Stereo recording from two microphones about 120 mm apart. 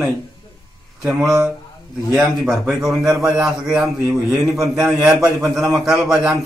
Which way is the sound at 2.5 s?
Centre (ahead or behind).